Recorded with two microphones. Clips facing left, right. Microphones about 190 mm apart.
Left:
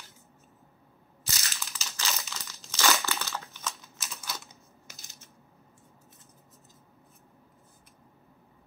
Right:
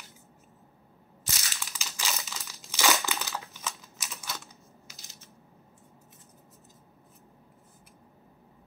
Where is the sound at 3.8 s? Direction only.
Centre (ahead or behind).